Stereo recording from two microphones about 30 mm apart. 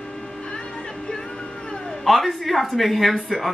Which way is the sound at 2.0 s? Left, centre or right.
Centre.